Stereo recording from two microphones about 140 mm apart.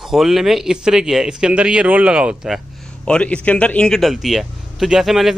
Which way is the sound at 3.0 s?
10° left (ahead or behind).